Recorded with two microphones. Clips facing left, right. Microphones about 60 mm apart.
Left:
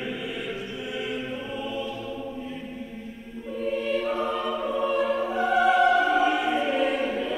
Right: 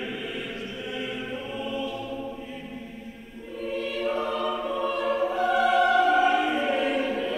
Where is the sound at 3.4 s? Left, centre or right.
Centre.